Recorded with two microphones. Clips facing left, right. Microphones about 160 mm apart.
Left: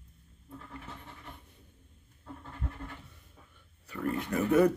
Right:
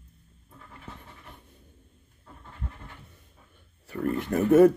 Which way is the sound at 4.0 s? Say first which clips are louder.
Right 5 dB; 40° right (ahead or behind).